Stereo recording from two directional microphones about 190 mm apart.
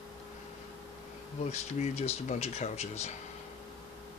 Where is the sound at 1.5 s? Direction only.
35° left (ahead or behind).